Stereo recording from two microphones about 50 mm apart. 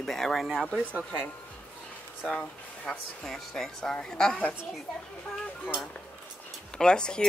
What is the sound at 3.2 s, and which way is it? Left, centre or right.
Speech, centre.